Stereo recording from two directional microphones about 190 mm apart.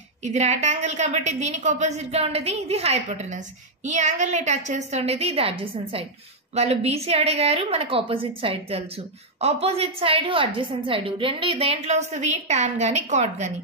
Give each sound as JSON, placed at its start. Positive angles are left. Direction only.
{"t": 0.2, "sound": "a woman's voice", "side_deg": -35}